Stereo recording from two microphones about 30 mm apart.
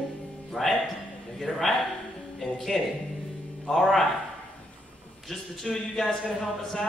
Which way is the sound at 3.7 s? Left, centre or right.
Centre.